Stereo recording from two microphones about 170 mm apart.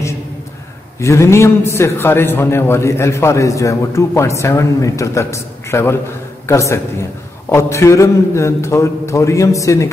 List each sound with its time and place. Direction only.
1.0 s a man's voice: 15° left (ahead or behind)